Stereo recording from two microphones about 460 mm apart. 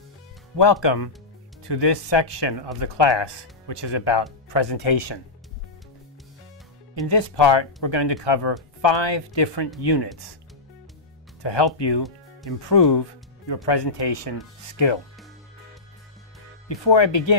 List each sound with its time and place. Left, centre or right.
0.8 s speech: left
7.1 s speech: left
11.4 s speech: left
16.6 s speech: left